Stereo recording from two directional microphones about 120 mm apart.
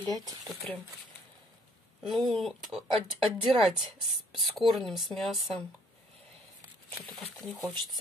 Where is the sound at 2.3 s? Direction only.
Centre (ahead or behind).